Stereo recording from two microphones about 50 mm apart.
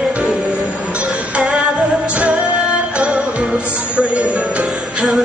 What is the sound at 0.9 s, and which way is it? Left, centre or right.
Music, right.